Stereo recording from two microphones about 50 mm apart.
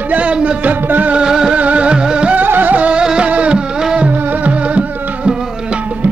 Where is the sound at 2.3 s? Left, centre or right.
Right.